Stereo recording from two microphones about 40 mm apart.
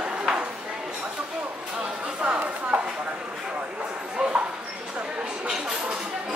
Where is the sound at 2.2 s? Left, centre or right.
Right.